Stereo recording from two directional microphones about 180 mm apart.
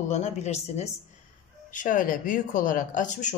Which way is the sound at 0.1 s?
40° left (ahead or behind).